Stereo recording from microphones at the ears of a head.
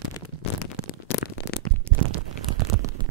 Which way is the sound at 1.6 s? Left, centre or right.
Right.